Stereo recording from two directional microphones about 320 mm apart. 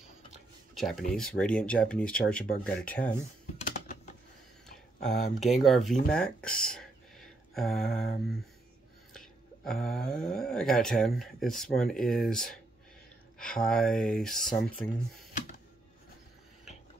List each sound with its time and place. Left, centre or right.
0.7 s speech: centre
3.6 s typing: left
5.0 s speech: centre